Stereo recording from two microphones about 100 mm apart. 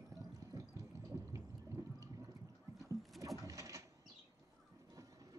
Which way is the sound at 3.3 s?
35° right (ahead or behind).